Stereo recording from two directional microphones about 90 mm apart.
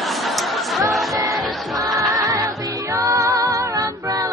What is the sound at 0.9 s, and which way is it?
Music, centre (ahead or behind).